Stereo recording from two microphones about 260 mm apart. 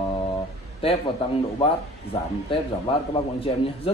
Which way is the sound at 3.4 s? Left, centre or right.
Left.